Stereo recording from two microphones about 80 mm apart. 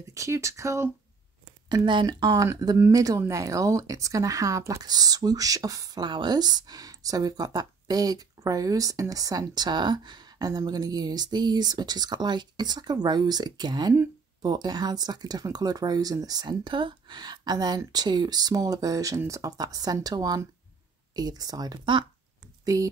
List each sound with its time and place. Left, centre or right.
0.1 s speech: right
1.7 s speech: right
2.4 s speech: right
4.8 s speech: right